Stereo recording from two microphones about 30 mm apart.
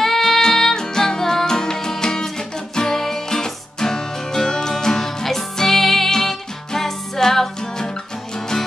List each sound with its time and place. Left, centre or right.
0.0 s music: centre